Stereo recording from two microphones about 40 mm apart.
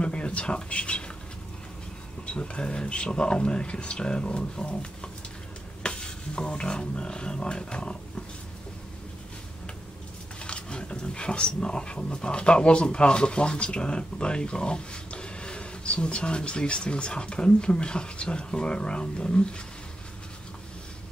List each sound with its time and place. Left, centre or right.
0.0 s speech: left
2.2 s speech: left
5.8 s stir: left
10.4 s speech: left